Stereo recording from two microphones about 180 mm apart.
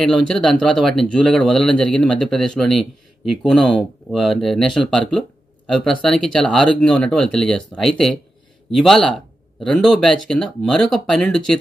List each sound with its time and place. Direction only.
0.0 s speech: centre (ahead or behind)
6.0 s speech: 5° left (ahead or behind)